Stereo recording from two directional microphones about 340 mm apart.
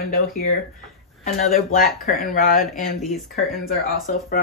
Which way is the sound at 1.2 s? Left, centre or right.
Left.